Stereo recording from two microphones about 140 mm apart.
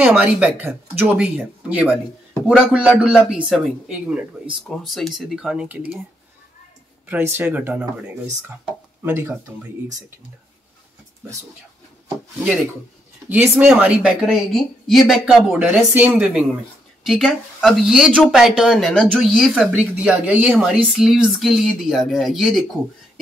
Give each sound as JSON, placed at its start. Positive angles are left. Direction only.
{"t": 0.0, "sound": "speech", "side_deg": -10}
{"t": 7.1, "sound": "speech", "side_deg": -15}
{"t": 9.0, "sound": "speech", "side_deg": -15}
{"t": 13.3, "sound": "speech", "side_deg": -15}